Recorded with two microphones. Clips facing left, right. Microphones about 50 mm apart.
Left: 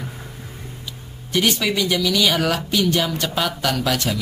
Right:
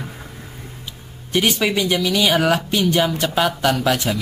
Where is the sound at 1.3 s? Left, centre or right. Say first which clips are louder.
Right 2 dB; centre.